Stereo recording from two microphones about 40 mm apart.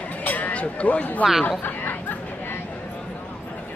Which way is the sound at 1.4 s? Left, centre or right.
Left.